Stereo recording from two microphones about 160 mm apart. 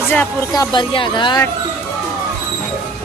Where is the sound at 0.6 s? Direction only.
30° left (ahead or behind).